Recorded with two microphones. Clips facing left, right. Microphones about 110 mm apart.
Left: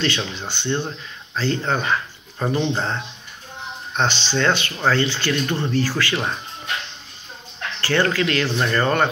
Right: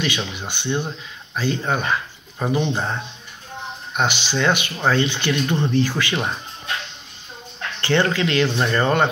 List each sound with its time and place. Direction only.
0.0 s speech: 15° right (ahead or behind)
7.8 s speech: 20° right (ahead or behind)